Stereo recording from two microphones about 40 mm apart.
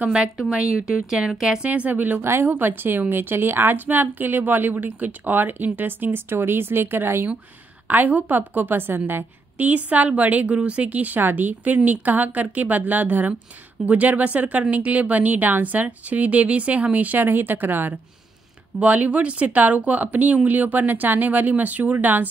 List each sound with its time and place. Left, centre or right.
0.5 s speech: right
1.6 s a woman's voice: right
2.7 s speech: right
7.9 s a woman's voice: right
8.4 s speech: right
9.6 s speech: right
11.1 s a woman's voice: right
18.8 s a woman's voice: right